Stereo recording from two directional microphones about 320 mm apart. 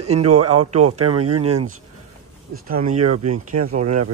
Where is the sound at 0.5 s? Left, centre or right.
Right.